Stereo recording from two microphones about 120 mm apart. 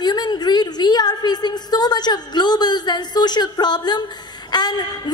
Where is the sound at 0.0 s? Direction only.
35° left (ahead or behind).